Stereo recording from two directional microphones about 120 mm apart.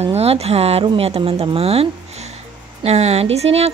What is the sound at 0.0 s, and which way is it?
Speech, 60° right (ahead or behind).